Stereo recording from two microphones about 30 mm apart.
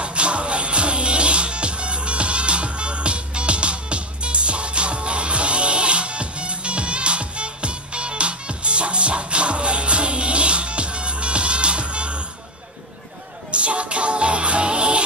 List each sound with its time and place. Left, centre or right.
0.0 s music: right
13.5 s music: right